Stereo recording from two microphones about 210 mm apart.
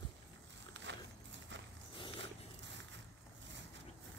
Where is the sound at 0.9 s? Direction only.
60° right (ahead or behind).